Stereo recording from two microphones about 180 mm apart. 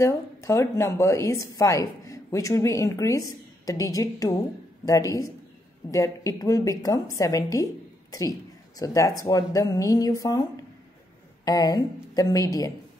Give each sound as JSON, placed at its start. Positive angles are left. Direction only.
{"t": 0.0, "sound": "a woman's voice", "side_deg": 15}